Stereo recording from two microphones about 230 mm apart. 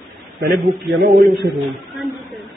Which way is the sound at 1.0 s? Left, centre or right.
Right.